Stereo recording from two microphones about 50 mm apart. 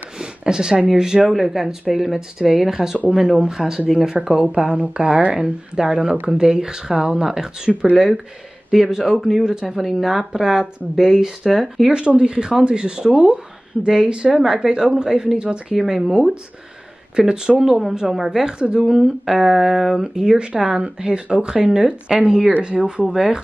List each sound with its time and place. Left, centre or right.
0.2 s speech: centre
1.3 s speech: centre
4.5 s speech: right; by 11.9 s centre
12.2 s speech: centre
13.1 s speech: right
14.0 s speech: centre
15.7 s speech: centre
17.1 s speech: centre
17.6 s speech: centre
18.6 s speech: centre